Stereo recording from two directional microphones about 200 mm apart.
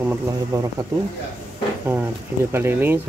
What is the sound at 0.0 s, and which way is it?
Speech, 10° right (ahead or behind).